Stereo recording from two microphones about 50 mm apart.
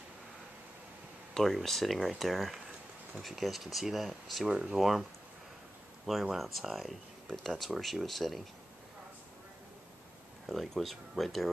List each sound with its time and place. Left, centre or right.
1.3 s speech: centre
4.5 s speech: centre
4.7 s speech: centre
6.3 s speech: centre
10.5 s speech: centre